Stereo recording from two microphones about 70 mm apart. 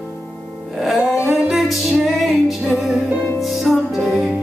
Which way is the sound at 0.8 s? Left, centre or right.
Centre.